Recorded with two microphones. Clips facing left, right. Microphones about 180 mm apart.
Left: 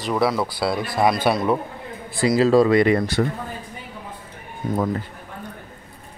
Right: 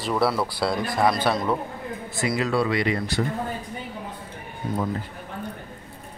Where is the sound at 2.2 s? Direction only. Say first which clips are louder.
Left 8 dB; 35° left (ahead or behind); by 3.0 s 50° left (ahead or behind).